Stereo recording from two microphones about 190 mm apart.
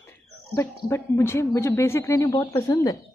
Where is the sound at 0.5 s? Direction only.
15° left (ahead or behind).